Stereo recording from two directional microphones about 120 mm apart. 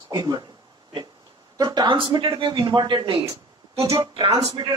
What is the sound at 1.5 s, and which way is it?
Speech, 35° right (ahead or behind).